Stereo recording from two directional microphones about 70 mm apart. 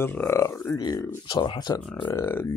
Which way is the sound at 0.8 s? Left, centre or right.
Left.